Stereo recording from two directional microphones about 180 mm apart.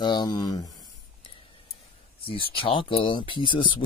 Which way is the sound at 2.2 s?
30° left (ahead or behind).